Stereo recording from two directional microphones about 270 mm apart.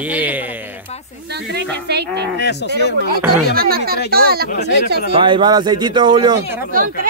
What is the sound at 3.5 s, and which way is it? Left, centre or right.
Speech, right.